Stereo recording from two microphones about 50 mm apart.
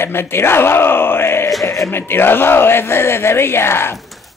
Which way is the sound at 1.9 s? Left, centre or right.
Left.